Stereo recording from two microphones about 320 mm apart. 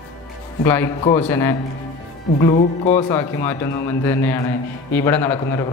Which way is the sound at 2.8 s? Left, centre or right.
Left.